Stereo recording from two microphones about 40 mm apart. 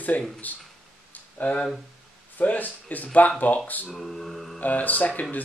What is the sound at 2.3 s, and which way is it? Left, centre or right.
Speech, left.